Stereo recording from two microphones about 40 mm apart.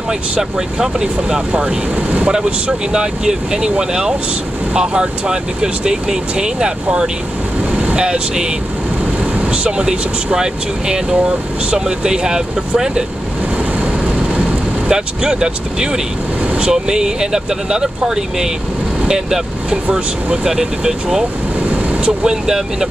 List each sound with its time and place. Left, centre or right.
0.4 s speech: centre
1.5 s speech: right
2.9 s speech: centre
9.5 s speech: right
14.9 s speech: centre